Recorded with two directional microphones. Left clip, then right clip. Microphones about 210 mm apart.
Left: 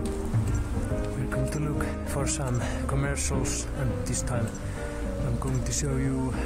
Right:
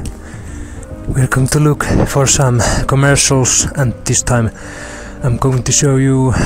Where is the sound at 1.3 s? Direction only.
55° right (ahead or behind).